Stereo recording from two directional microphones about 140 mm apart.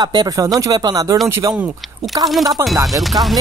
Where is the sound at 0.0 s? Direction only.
30° right (ahead or behind).